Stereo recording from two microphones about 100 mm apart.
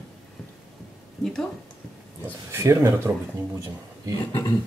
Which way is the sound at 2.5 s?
25° right (ahead or behind).